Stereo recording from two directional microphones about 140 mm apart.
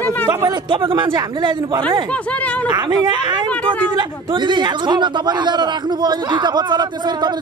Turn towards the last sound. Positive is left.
turn(degrees=-30)  # may be behind; listen again after turning